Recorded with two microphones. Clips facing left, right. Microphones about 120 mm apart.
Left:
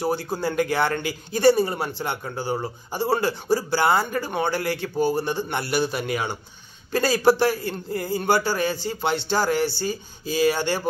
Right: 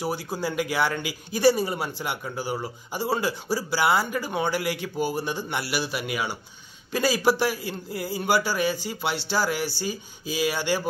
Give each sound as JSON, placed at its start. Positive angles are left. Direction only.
{"t": 0.0, "sound": "a man's voice", "side_deg": -10}